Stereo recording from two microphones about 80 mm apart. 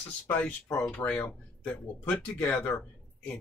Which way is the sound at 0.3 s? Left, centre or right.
Centre.